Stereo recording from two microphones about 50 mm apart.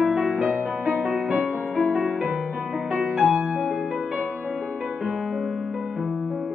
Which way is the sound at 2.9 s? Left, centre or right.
Right.